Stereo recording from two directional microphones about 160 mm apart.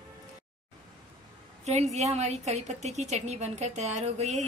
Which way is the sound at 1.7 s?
45° right (ahead or behind).